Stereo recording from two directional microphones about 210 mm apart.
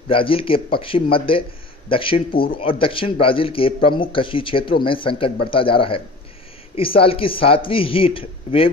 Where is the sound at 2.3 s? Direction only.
45° left (ahead or behind).